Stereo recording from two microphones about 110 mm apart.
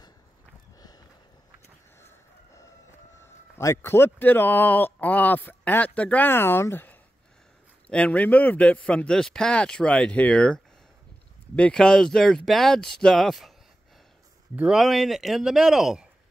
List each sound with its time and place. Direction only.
0.7 s a sound: 35° left (ahead or behind)
2.0 s chicken: 25° left (ahead or behind)
3.2 s a man's voice: 25° left (ahead or behind); by 13.5 s centre (ahead or behind)
14.5 s speech: 10° right (ahead or behind)
14.8 s speech: centre (ahead or behind)